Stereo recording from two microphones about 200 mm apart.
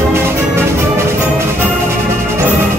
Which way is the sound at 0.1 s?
10° right (ahead or behind).